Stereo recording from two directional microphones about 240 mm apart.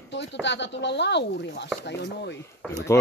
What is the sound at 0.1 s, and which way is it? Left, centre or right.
Speech, left.